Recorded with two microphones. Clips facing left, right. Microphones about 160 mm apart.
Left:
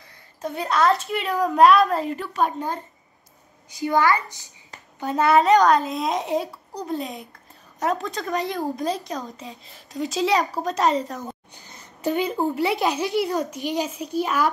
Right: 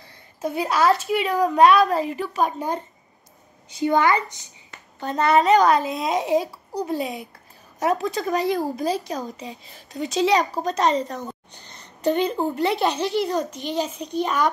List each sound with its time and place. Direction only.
0.4 s speech: 10° right (ahead or behind)
3.7 s a woman's voice: 25° right (ahead or behind)
5.0 s speech: 5° left (ahead or behind)